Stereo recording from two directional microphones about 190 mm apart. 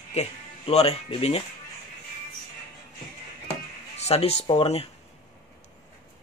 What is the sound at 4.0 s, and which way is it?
Speech, 30° left (ahead or behind).